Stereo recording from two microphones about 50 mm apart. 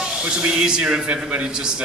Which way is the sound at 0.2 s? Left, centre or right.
Centre.